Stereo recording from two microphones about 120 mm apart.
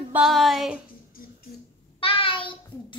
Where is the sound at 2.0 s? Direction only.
50° left (ahead or behind).